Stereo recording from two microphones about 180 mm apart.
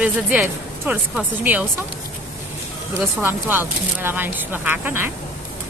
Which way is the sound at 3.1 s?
10° right (ahead or behind).